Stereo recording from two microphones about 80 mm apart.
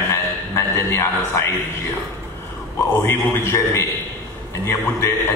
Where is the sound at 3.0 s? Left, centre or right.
Left.